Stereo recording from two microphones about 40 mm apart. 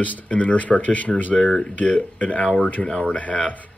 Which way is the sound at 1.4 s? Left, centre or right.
Left.